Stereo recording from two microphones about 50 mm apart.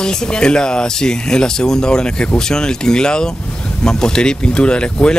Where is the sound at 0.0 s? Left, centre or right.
Centre.